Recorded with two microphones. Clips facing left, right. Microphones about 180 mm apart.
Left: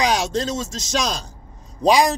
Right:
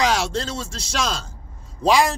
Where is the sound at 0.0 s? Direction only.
15° left (ahead or behind).